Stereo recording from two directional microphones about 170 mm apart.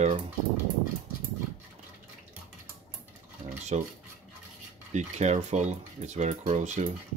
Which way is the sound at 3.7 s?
40° right (ahead or behind).